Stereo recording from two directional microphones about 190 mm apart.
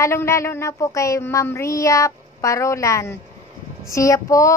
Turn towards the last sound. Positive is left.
turn(degrees=15)  # may be behind; listen again after turning